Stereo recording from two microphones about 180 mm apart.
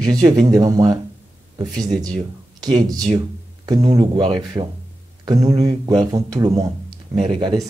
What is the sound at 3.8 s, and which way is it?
Speech, 35° right (ahead or behind).